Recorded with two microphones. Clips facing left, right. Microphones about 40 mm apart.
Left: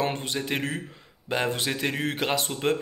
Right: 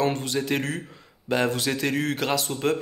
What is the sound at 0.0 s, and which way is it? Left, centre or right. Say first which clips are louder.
A man's voice: right 3 dB; left.